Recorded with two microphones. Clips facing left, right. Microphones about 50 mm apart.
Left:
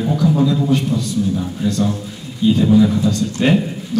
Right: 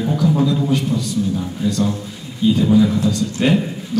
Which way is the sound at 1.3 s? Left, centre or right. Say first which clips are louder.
Left 1 dB; centre.